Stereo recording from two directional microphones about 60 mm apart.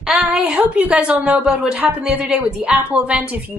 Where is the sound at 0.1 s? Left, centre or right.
Centre.